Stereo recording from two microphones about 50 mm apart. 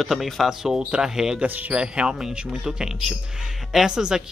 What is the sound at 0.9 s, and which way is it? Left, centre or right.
Speech, centre.